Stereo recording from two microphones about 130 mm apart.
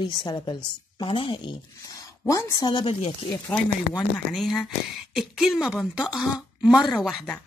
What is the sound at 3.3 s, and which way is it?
Speech, 10° left (ahead or behind).